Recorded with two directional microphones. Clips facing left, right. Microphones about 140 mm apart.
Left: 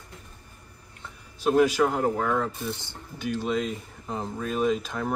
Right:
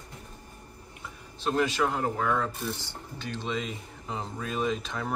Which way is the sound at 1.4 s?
10° left (ahead or behind).